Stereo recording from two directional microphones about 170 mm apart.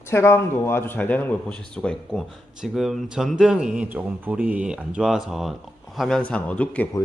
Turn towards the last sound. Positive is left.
turn(degrees=10)  # may be behind; listen again after turning